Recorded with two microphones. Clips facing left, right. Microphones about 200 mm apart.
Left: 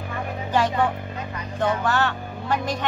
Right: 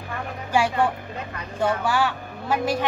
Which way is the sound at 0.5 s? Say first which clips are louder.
Even; 10° right (ahead or behind).